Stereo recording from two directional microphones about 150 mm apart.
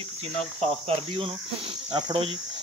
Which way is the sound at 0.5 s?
40° right (ahead or behind).